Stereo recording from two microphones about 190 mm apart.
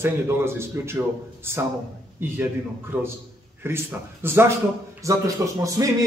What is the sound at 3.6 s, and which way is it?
A man's voice, 10° right (ahead or behind).